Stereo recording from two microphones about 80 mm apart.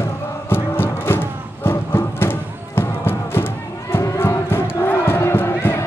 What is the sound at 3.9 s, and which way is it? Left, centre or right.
Crowd, left.